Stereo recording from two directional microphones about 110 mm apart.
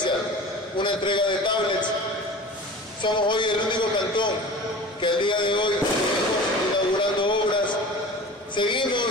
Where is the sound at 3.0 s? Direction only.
45° left (ahead or behind).